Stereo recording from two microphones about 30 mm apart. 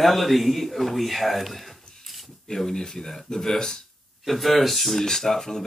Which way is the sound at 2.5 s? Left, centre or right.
Centre.